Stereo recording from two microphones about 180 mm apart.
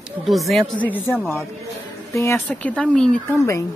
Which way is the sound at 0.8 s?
10° left (ahead or behind).